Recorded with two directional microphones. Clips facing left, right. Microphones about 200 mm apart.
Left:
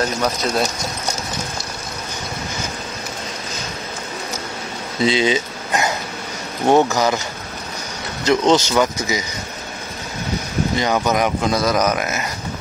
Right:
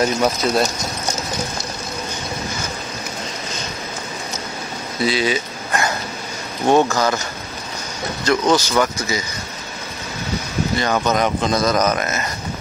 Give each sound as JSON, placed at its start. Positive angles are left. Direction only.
{"t": 0.0, "sound": "speech", "side_deg": -5}
{"t": 5.0, "sound": "speech", "side_deg": 25}
{"t": 8.3, "sound": "speech", "side_deg": 20}
{"t": 10.8, "sound": "speech", "side_deg": 15}